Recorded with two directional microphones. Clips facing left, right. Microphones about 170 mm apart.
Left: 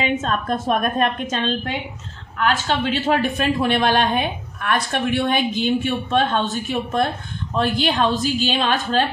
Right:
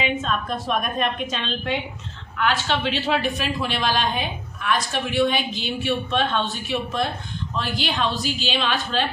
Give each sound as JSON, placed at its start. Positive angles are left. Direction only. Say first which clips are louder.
{"t": 0.2, "sound": "speech", "louder": "left 4 dB", "side_deg": 50}